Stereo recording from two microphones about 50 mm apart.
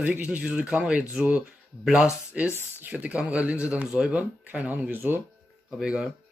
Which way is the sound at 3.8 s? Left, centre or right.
Centre.